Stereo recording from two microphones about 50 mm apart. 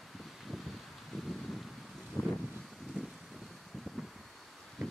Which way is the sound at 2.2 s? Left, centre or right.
Left.